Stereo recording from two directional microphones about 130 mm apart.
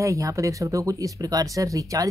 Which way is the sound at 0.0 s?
25° right (ahead or behind).